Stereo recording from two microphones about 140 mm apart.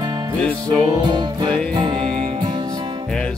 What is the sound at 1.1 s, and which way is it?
Music, 30° right (ahead or behind).